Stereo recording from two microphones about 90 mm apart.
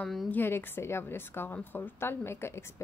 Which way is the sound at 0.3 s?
25° left (ahead or behind).